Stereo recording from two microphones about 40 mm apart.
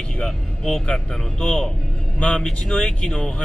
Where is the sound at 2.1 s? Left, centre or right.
Left.